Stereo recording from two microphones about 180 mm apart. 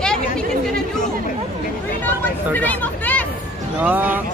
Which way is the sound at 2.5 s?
10° left (ahead or behind).